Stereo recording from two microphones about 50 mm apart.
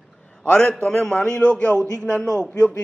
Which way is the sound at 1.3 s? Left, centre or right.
Left.